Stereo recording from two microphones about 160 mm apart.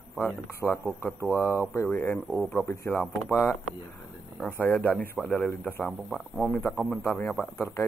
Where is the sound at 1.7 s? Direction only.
10° left (ahead or behind).